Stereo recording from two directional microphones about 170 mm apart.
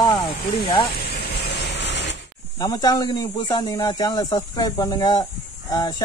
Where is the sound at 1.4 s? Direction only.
85° left.